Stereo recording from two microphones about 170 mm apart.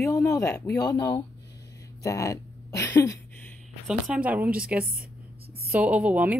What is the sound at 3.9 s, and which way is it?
Speech, 10° right (ahead or behind).